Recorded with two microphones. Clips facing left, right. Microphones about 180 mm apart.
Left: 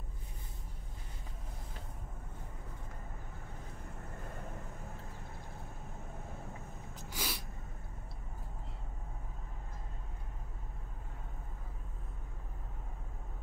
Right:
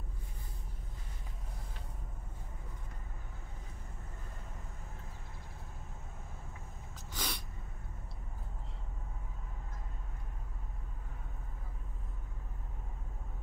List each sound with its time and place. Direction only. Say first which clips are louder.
7.1 s sneeze: even; 5° left (ahead or behind)